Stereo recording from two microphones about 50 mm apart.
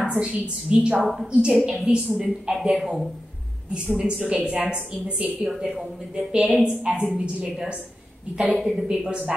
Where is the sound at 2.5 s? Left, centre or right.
Centre.